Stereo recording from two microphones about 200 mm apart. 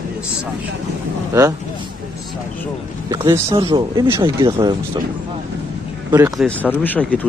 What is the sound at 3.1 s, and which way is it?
Speech, 15° right (ahead or behind).